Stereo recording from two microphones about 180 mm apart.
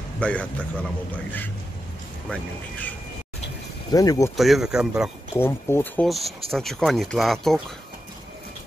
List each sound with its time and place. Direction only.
0.2 s speech: 5° left (ahead or behind)
2.2 s speech: 5° left (ahead or behind)
3.9 s speech: 20° left (ahead or behind)
4.4 s speech: centre (ahead or behind)
5.3 s speech: 15° left (ahead or behind)
6.0 s speech: centre (ahead or behind)